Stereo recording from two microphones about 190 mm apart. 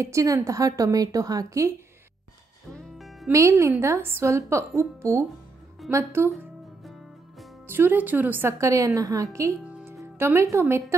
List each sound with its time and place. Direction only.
0.0 s a woman's voice: 15° right (ahead or behind)
2.7 s music: centre (ahead or behind)
3.3 s a woman's voice: 15° right (ahead or behind)
6.8 s music: centre (ahead or behind)
7.6 s a woman's voice: 10° right (ahead or behind)